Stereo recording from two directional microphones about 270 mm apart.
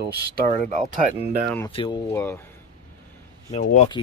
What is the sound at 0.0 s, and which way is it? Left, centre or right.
Speech, right.